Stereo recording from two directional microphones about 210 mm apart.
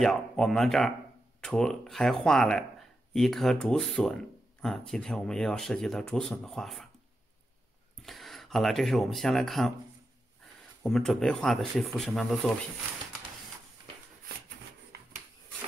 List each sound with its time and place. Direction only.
0.0 s speech: centre (ahead or behind)
8.0 s speech: centre (ahead or behind)
10.8 s speech: centre (ahead or behind)